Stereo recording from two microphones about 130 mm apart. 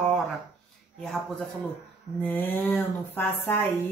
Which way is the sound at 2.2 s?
15° left (ahead or behind).